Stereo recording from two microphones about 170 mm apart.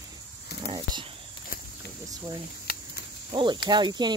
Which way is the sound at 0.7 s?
25° right (ahead or behind).